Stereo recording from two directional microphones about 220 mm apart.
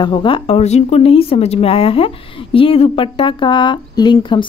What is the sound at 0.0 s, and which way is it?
Speech, 20° left (ahead or behind).